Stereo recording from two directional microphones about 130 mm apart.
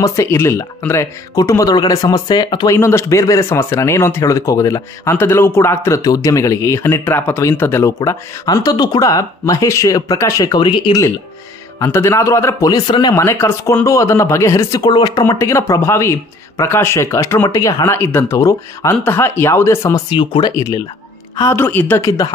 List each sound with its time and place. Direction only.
0.0 s speech: 25° left (ahead or behind)
11.8 s speech: 20° left (ahead or behind)
13.1 s speech: 20° left (ahead or behind)
15.2 s speech: 20° left (ahead or behind)
20.1 s speech: 40° left (ahead or behind)
21.4 s speech: 20° left (ahead or behind)